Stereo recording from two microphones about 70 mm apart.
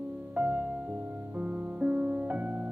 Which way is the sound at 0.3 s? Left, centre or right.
Right.